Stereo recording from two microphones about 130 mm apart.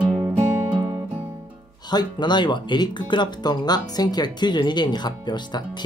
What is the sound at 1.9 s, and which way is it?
Speech, 35° left (ahead or behind).